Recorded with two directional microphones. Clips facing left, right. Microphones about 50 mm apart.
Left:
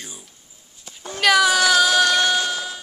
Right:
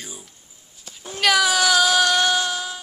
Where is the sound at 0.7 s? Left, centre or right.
Centre.